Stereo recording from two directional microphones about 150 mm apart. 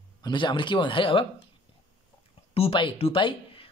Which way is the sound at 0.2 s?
30° left (ahead or behind).